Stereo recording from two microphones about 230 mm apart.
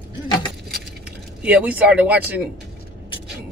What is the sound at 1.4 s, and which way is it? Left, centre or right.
Speech, centre.